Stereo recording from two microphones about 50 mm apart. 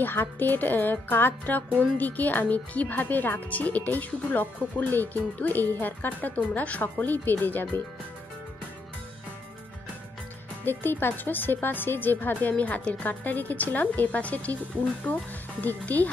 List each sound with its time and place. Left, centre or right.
0.0 s speech: left
10.6 s speech: left
15.6 s speech: left